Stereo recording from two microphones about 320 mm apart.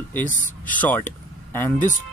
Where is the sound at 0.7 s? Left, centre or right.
Centre.